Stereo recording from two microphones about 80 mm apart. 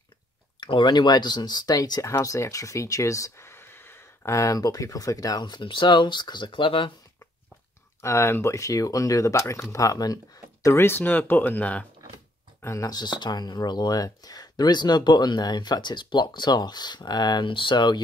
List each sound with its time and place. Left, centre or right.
0.6 s speech: left
8.0 s speech: left
10.8 s speech: left
12.6 s speech: left
12.9 s speech: left